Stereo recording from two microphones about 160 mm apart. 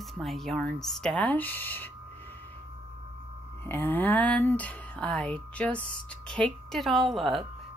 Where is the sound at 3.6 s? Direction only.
10° left (ahead or behind).